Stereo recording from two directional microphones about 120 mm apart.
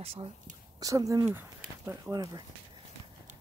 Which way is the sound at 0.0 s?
55° right (ahead or behind).